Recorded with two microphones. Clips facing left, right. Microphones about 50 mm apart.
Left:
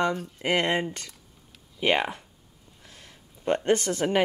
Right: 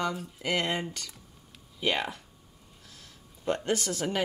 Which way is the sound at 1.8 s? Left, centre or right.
Left.